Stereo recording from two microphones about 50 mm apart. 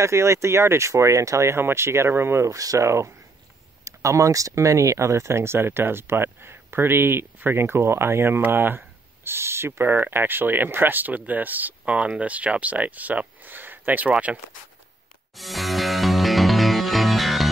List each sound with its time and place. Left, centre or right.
0.0 s speech: right
1.6 s speech: right
2.4 s speech: right
15.3 s music: centre